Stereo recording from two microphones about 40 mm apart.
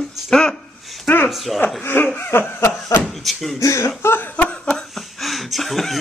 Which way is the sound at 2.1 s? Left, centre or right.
Left.